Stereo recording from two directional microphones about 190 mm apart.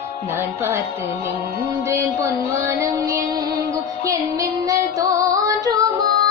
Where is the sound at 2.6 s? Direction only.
15° right (ahead or behind).